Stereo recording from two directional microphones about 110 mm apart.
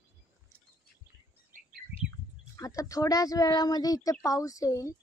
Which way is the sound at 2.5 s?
30° left (ahead or behind).